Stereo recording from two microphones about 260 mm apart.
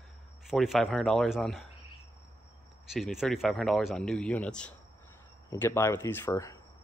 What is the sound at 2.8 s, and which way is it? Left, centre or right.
A man's voice, centre.